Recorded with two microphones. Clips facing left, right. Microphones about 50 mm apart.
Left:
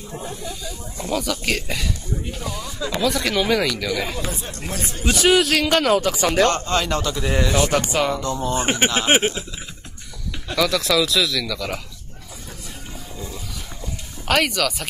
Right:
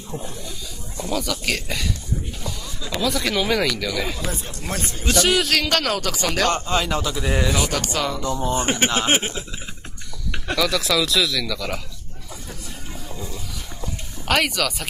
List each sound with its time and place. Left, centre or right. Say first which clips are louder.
1.1 s speech: left 2 dB; centre
3.0 s speech: left 1 dB; centre
4.6 s speech: right 1 dB; right
5.2 s speech: left 4 dB; centre
5.7 s speech: left 5 dB; centre
6.5 s speech: even; centre
7.7 s speech: left 4 dB; left
8.2 s speech: even; centre
8.5 s speech: left 2 dB; left
10.5 s speech: left 1 dB; centre
14.2 s speech: left 1 dB; centre